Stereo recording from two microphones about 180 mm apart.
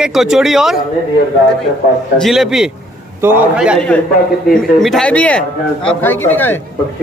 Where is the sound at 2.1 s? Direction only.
Centre (ahead or behind).